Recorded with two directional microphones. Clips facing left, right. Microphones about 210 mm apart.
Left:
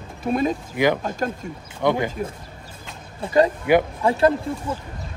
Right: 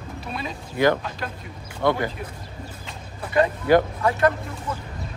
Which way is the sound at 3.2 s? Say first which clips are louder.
Left 3 dB; 35° left (ahead or behind).